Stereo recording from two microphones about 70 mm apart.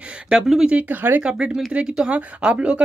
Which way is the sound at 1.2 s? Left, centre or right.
Centre.